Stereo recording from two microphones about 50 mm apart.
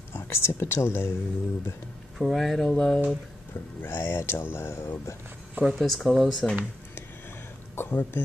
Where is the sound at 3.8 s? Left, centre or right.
Left.